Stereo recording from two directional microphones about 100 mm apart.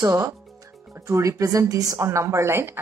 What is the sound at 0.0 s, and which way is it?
A woman's voice, 35° right (ahead or behind).